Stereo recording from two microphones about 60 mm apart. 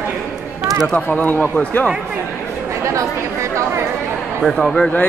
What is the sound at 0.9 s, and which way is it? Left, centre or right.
Speech, left.